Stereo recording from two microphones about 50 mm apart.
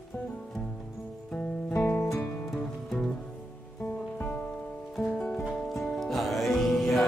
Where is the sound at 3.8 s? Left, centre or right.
Left.